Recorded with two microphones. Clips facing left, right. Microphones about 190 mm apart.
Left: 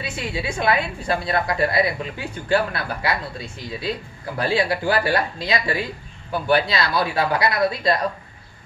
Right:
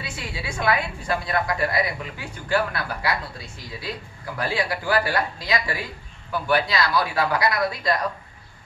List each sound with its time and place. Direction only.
0.0 s a woman's voice: 25° left (ahead or behind)